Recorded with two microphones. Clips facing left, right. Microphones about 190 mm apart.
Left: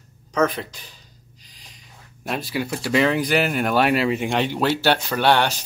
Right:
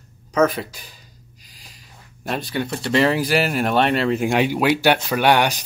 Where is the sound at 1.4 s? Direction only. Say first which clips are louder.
Right 1 dB; 5° right (ahead or behind).